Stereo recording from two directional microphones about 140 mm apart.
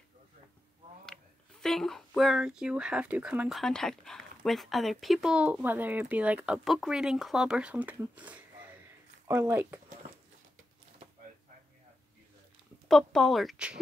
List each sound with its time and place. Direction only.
1.0 s speech: 5° left (ahead or behind); by 9.8 s 15° right (ahead or behind)
12.8 s speech: centre (ahead or behind)